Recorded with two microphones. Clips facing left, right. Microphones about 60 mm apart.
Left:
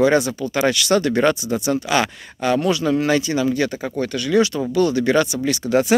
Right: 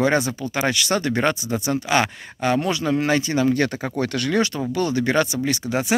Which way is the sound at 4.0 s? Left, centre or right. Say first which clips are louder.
Even; right.